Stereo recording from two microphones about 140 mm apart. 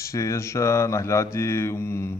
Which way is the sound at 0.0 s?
20° left (ahead or behind).